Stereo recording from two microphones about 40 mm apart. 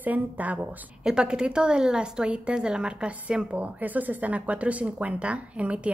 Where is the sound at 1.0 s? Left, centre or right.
Right.